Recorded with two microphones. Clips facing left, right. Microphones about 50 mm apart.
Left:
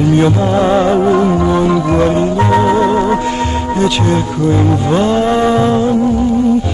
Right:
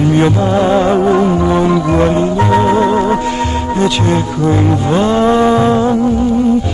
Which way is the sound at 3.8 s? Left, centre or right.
Right.